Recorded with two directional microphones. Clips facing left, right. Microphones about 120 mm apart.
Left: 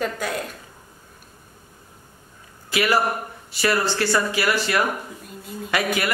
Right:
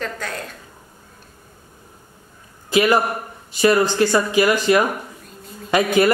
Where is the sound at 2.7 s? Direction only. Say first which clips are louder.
Right 4 dB; 20° right (ahead or behind).